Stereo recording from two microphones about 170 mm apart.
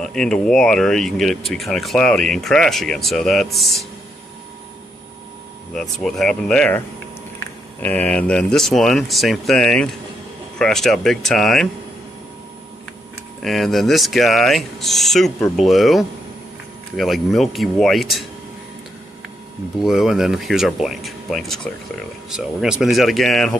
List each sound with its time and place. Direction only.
0.0 s speech: 5° left (ahead or behind)
5.8 s speech: centre (ahead or behind)
7.8 s speech: 10° left (ahead or behind)
13.4 s speech: centre (ahead or behind)
19.8 s speech: centre (ahead or behind)